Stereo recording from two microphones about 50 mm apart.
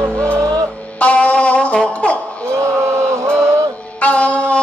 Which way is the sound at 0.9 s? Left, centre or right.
Left.